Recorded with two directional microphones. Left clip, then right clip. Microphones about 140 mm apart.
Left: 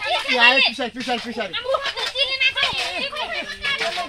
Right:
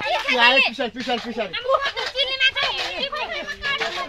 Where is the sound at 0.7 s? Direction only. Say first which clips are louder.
Even; 25° right (ahead or behind).